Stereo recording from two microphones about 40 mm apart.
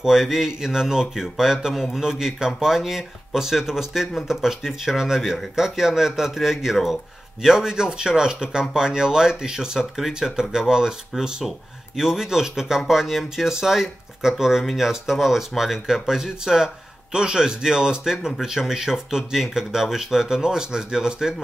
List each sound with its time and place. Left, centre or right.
0.0 s speech: centre
7.4 s speech: centre